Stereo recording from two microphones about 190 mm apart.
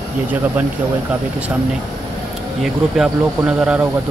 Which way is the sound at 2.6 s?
5° right (ahead or behind).